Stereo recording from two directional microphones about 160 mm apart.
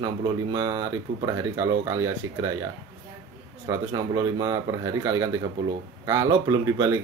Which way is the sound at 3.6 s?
25° right (ahead or behind).